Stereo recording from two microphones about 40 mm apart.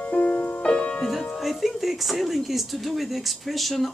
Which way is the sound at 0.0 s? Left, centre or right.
Left.